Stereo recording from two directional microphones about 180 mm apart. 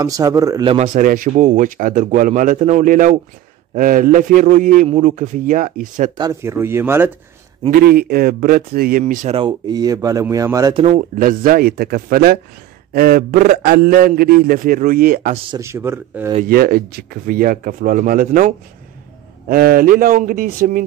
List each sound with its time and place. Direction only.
0.0 s speech: 20° right (ahead or behind)
0.7 s speech: 45° right (ahead or behind)
6.1 s speech: 20° right (ahead or behind)
7.7 s a man's voice: 55° right (ahead or behind)
9.0 s speech: 40° right (ahead or behind); by 10.8 s 20° right (ahead or behind)
10.8 s speech: 35° right (ahead or behind)
11.1 s a man's voice: 50° right (ahead or behind)
15.5 s speech: 15° right (ahead or behind)
16.4 s speech: 55° right (ahead or behind)